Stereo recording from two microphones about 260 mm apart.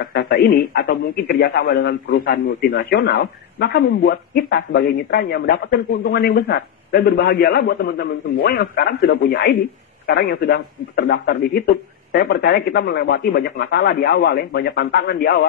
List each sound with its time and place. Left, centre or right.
0.0 s a man's voice: left